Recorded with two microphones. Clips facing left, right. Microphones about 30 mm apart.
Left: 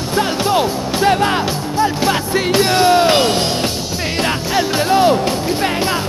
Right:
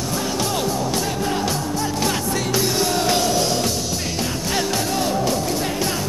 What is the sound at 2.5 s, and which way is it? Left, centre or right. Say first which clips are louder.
Music: left 10 dB; left.